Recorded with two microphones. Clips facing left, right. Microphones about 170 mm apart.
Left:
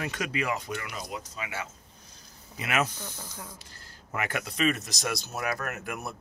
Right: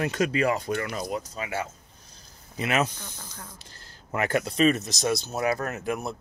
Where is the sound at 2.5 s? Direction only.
25° right (ahead or behind).